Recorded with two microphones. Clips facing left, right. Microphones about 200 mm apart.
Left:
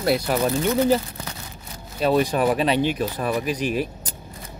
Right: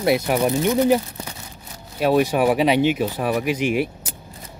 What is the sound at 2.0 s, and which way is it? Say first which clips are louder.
Speech: right 2 dB; 10° right (ahead or behind).